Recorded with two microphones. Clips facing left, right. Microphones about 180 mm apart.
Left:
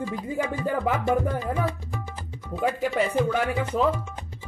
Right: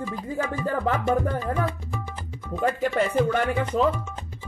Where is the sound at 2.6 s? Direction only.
5° left (ahead or behind).